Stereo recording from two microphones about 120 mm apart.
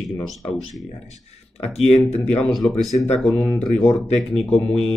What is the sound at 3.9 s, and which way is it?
Speech, centre (ahead or behind).